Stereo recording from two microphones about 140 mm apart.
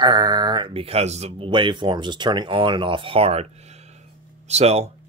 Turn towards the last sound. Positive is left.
turn(degrees=-50)  # may be behind; listen again after turning